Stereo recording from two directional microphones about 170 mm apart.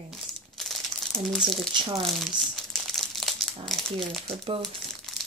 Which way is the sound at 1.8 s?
30° right (ahead or behind).